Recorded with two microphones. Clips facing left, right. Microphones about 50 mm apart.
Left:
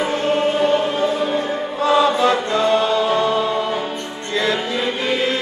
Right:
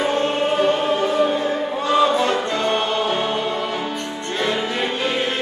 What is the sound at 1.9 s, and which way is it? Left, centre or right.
Chant, left.